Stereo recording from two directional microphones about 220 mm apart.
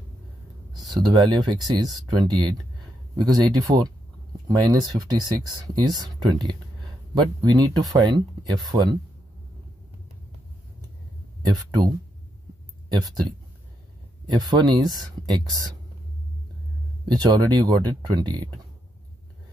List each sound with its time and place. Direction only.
0.7 s a sound: centre (ahead or behind)
1.0 s speech: 20° right (ahead or behind)
11.4 s speech: 15° right (ahead or behind)
14.2 s speech: 20° right (ahead or behind)
17.1 s speech: 20° right (ahead or behind)